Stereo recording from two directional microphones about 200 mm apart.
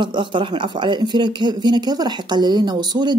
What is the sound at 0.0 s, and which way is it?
Speech, 25° right (ahead or behind).